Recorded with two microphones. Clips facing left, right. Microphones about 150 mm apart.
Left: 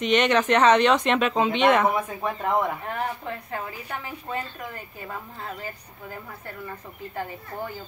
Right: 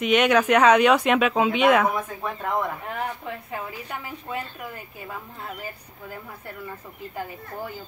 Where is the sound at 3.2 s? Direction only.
10° right (ahead or behind).